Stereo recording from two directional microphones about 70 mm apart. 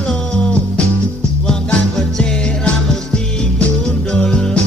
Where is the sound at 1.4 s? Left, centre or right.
Centre.